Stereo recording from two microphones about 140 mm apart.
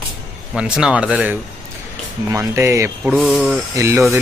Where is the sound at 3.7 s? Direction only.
20° right (ahead or behind).